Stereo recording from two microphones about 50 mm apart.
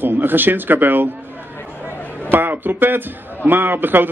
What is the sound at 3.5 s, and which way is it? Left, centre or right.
Speech, right.